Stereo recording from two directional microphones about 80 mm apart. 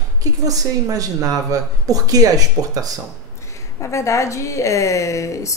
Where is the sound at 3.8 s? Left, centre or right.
Left.